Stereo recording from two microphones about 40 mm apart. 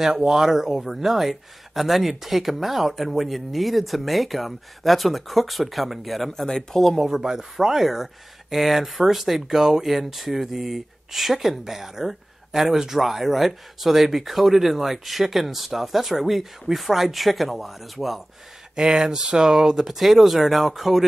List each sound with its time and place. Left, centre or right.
0.0 s speech: centre
7.0 s speech: centre
18.8 s speech: centre
19.9 s speech: centre